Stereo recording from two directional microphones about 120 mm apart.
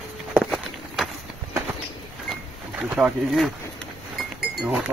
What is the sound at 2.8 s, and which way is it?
Speech, 10° right (ahead or behind).